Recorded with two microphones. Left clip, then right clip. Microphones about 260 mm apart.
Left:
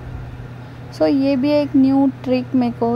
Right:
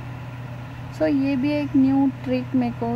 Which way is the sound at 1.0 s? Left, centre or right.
Centre.